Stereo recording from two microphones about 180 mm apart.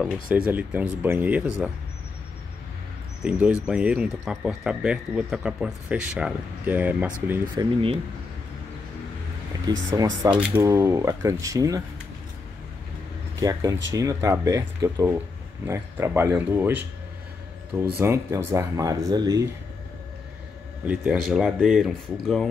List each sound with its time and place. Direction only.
0.0 s speech: centre (ahead or behind)
3.3 s speech: 5° right (ahead or behind)
7.5 s speech: 30° right (ahead or behind)
9.7 s speech: 20° right (ahead or behind)
13.4 s speech: 20° right (ahead or behind)
17.9 s speech: 15° right (ahead or behind)
20.8 s speech: 5° right (ahead or behind)